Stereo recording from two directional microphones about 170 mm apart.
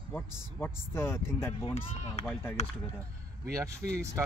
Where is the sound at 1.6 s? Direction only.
40° left (ahead or behind).